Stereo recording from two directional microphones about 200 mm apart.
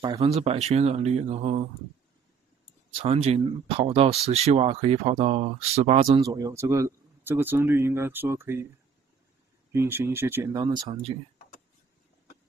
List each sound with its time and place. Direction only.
0.0 s speech: 20° right (ahead or behind)
2.9 s speech: 30° right (ahead or behind)
6.0 s speech: 20° right (ahead or behind)
9.7 s speech: 10° right (ahead or behind); by 11.1 s 30° right (ahead or behind)